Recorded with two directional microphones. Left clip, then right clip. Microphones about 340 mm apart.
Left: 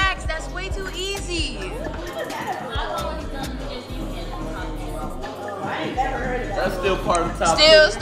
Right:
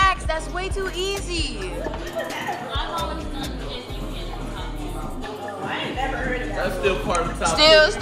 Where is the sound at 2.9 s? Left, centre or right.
Centre.